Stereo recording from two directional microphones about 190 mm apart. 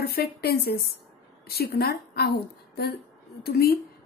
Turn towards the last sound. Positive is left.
turn(degrees=55)  # may be behind; listen again after turning